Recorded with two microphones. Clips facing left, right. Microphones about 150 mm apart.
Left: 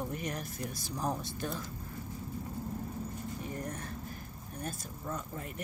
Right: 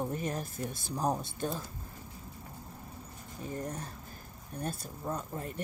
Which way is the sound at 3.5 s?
20° right (ahead or behind).